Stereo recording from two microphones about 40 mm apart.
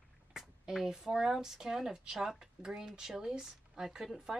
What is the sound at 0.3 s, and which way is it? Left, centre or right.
Speech, centre.